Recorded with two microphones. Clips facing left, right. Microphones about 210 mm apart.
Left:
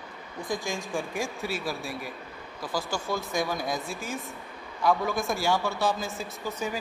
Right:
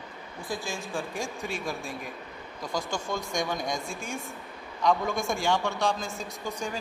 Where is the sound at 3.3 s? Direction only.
Centre (ahead or behind).